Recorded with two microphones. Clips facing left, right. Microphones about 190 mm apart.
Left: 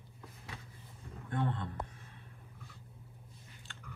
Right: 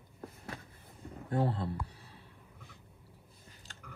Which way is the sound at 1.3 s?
35° right (ahead or behind).